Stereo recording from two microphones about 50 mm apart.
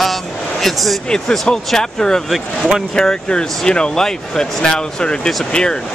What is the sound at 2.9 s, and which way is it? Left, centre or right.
Speech, centre.